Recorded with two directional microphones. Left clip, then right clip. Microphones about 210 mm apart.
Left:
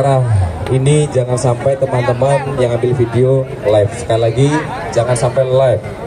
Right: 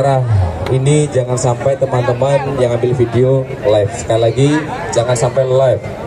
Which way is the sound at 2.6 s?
25° right (ahead or behind).